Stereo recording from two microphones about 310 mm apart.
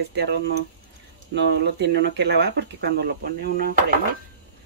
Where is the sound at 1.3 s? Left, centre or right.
Right.